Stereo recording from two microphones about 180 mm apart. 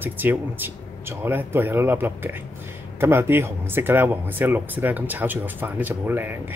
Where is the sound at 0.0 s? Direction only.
10° right (ahead or behind).